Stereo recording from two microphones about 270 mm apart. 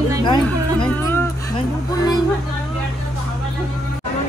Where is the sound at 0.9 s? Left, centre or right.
Centre.